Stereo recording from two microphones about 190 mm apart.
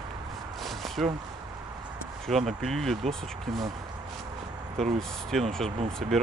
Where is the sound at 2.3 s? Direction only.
Centre (ahead or behind).